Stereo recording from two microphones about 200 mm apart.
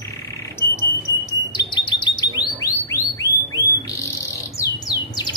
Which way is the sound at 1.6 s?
20° left (ahead or behind).